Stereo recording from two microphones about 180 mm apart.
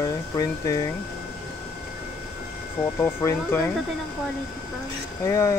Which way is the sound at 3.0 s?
10° left (ahead or behind).